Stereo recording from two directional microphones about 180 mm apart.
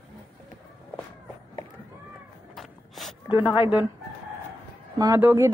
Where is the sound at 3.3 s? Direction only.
25° left (ahead or behind).